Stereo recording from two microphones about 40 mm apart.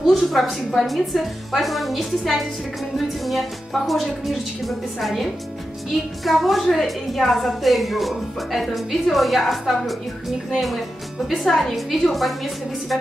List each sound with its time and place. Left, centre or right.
0.0 s a woman's voice: centre